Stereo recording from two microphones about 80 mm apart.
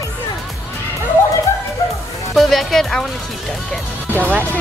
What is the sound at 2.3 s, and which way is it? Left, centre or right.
Music, centre.